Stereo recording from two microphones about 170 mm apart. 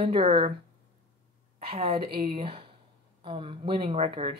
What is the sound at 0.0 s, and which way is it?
Speech, 30° right (ahead or behind).